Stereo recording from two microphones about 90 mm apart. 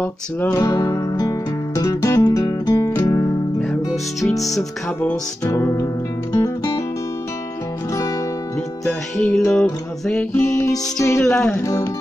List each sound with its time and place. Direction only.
0.0 s music: 20° left (ahead or behind)
0.6 s music: 40° left (ahead or behind)
3.9 s music: centre (ahead or behind)
5.5 s music: 30° left (ahead or behind)
6.3 s music: 45° left (ahead or behind)
8.8 s music: 5° left (ahead or behind)
10.3 s music: 30° left (ahead or behind)
11.2 s music: 5° left (ahead or behind)
11.5 s music: 35° left (ahead or behind)